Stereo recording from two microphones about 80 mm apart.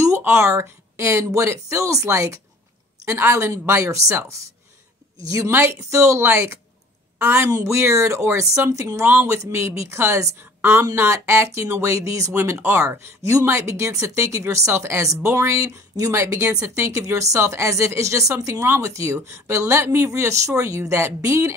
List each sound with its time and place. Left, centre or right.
0.2 s a woman's voice: right
5.5 s a woman's voice: right
5.8 s a woman's voice: right
9.0 s speech: right